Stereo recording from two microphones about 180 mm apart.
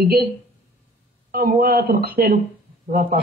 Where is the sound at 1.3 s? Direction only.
60° right (ahead or behind).